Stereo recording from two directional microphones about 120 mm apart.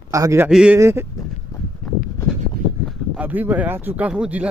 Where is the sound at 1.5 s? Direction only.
30° left (ahead or behind).